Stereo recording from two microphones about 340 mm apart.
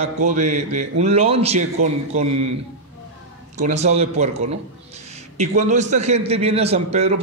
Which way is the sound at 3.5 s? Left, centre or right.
Centre.